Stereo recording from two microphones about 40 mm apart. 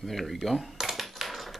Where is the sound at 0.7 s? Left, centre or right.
Centre.